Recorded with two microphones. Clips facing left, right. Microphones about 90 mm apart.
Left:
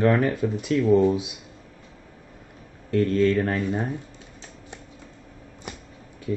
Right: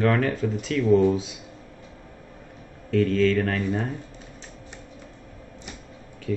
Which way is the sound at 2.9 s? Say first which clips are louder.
Even; 15° left (ahead or behind).